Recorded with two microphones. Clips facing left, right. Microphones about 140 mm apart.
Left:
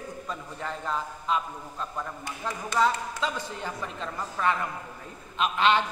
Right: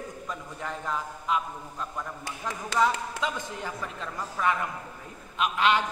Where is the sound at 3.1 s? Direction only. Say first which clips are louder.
Even; 15° right (ahead or behind).